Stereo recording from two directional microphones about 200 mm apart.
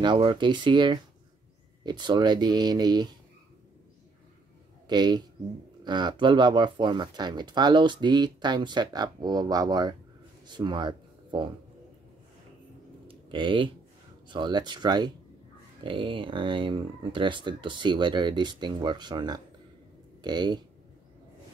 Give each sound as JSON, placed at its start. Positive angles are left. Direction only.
{"t": 0.0, "sound": "speech", "side_deg": -25}
{"t": 4.8, "sound": "a woman's voice", "side_deg": -20}
{"t": 13.1, "sound": "a sound", "side_deg": -25}
{"t": 14.3, "sound": "speech", "side_deg": -20}